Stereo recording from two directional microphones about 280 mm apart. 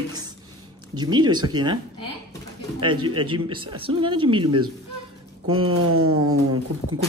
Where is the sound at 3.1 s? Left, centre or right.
Centre.